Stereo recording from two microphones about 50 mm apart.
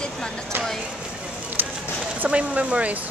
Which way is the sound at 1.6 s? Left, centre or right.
Right.